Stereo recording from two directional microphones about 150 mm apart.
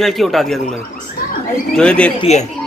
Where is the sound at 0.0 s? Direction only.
Centre (ahead or behind).